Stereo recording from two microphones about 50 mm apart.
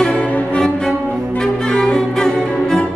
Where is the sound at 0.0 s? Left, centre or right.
Centre.